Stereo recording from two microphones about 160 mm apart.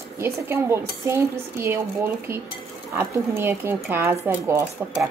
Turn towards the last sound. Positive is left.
turn(degrees=-20)  # may be behind; listen again after turning